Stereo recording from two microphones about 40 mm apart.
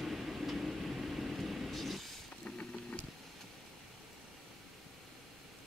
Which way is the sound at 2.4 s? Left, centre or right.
Left.